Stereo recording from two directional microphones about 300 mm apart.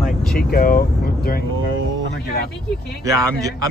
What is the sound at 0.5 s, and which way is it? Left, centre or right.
Vehicle, left.